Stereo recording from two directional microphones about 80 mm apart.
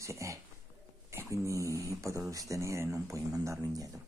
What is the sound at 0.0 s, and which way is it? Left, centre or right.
Speech, right.